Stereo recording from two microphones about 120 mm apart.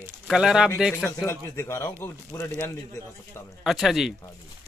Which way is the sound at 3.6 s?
Centre (ahead or behind).